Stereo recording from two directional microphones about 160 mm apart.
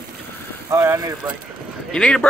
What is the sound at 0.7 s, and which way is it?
Speech, 20° right (ahead or behind).